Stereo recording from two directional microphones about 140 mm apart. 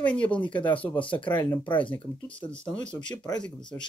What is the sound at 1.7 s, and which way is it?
Speech, 35° left (ahead or behind).